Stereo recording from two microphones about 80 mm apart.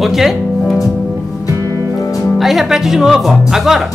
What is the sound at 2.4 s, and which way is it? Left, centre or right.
Speech, centre.